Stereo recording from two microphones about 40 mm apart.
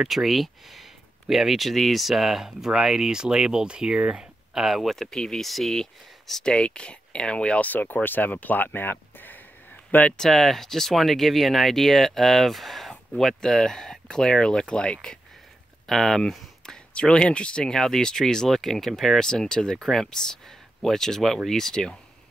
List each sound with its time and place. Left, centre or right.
0.1 s speech: centre; by 4.3 s right
4.6 s speech: centre
4.8 s speech: centre
6.4 s speech: left
7.7 s speech: left
10.1 s speech: centre
13.4 s speech: centre
15.9 s speech: centre
16.2 s a sound: centre
16.9 s speech: left
17.7 s speech: centre
19.1 s speech: centre